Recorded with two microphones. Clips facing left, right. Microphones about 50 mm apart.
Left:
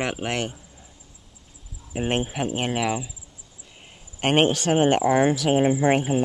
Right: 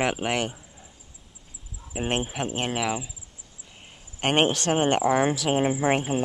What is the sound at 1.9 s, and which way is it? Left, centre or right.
Speech, centre.